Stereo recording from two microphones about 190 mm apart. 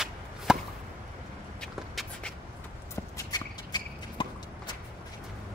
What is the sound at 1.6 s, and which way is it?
Shuffle, 5° left (ahead or behind).